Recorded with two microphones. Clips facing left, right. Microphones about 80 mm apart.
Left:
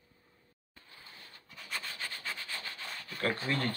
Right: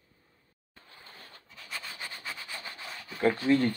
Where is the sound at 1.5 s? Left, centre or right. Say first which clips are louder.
Even; centre.